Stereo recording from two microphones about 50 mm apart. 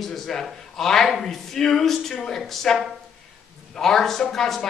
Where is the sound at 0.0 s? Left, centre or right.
Centre.